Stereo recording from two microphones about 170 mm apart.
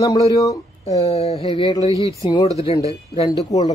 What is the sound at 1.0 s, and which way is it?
Speech, 35° left (ahead or behind).